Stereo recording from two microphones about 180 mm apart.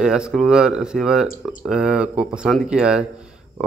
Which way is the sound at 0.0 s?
5° right (ahead or behind).